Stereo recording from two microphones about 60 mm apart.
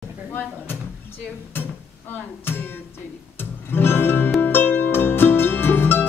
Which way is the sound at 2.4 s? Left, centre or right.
Left.